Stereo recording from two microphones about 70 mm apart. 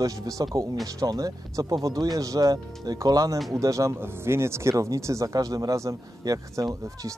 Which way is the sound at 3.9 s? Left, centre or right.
Right.